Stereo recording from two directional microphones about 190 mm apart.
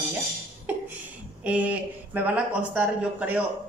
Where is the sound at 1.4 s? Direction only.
5° right (ahead or behind).